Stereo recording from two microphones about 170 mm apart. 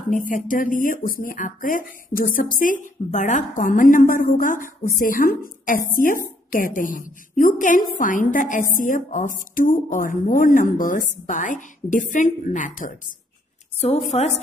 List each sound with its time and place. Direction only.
0.1 s speech: 50° left (ahead or behind)
13.7 s a woman's voice: 40° left (ahead or behind)